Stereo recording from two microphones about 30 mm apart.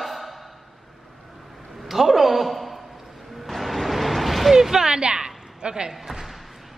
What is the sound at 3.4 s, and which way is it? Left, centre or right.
Music, centre.